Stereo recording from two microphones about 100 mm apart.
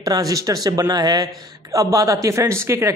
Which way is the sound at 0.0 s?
40° right (ahead or behind).